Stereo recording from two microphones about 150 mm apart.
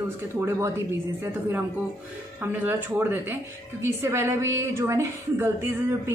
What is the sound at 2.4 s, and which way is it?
A woman's voice, 15° right (ahead or behind).